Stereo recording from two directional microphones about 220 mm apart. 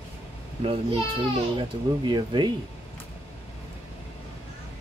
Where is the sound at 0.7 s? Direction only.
25° right (ahead or behind).